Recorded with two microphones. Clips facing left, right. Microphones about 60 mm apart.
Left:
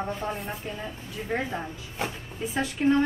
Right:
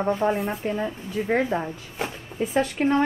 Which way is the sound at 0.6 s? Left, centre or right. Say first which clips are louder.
Right 8 dB; right.